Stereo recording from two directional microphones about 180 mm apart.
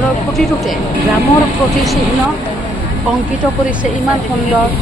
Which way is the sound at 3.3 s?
5° right (ahead or behind).